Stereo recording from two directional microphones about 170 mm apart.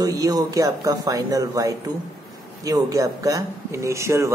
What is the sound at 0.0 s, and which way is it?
Speech, 20° right (ahead or behind).